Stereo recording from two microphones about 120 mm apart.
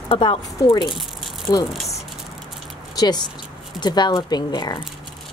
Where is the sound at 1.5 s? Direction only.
35° left (ahead or behind).